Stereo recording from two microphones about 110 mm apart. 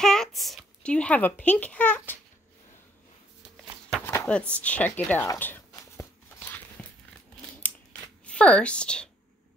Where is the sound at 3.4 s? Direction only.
10° right (ahead or behind).